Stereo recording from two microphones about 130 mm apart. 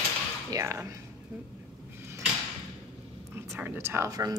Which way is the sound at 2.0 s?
20° right (ahead or behind).